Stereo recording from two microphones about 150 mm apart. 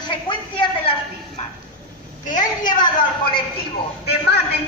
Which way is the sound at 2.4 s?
30° left (ahead or behind).